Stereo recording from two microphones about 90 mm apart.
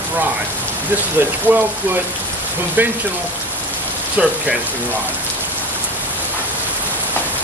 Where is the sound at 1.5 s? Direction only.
25° right (ahead or behind).